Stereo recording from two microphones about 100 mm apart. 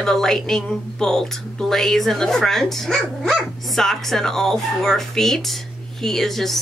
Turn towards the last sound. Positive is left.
turn(degrees=5)  # may be behind; listen again after turning